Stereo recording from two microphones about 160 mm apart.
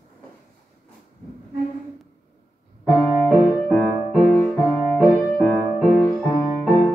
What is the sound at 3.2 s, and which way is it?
Music, centre (ahead or behind).